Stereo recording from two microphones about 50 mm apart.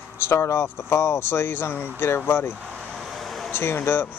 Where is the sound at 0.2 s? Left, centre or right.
Left.